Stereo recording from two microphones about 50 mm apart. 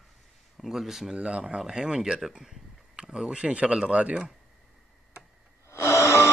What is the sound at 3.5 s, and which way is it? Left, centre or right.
Speech, right.